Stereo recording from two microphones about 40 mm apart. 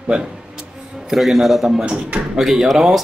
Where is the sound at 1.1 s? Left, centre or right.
Centre.